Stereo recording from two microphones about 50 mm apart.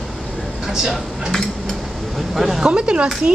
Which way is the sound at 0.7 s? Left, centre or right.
Centre.